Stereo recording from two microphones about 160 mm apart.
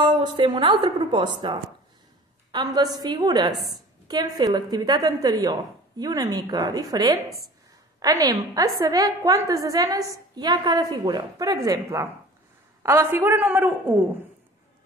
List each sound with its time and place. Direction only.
0.0 s a woman's voice: 30° right (ahead or behind); by 13.9 s 10° right (ahead or behind)